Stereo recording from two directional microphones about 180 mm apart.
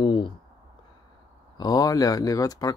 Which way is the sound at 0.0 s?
30° left (ahead or behind).